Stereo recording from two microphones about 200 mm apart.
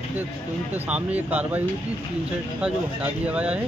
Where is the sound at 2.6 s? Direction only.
5° right (ahead or behind).